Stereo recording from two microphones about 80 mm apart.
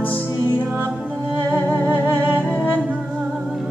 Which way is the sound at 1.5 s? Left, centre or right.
Right.